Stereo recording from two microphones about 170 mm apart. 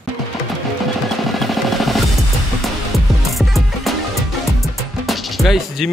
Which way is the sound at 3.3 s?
Centre (ahead or behind).